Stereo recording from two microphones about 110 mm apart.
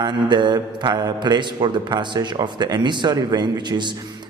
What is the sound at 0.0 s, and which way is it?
A man's voice, 45° right (ahead or behind).